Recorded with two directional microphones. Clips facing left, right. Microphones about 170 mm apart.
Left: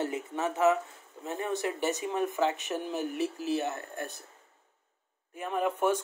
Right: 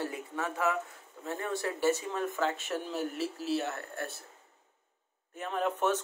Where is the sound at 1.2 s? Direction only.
20° left (ahead or behind).